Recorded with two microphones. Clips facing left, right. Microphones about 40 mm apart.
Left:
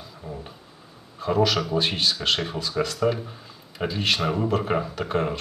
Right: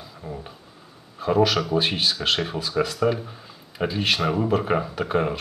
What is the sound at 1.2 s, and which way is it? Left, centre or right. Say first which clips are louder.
Speech: right 2 dB; centre.